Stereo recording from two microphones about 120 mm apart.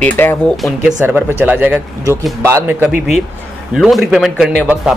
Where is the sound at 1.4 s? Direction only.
15° right (ahead or behind).